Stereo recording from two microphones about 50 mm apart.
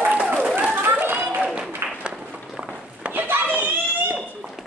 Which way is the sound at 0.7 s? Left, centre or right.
Right.